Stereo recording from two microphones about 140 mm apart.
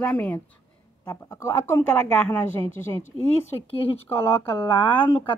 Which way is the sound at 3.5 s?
30° left (ahead or behind).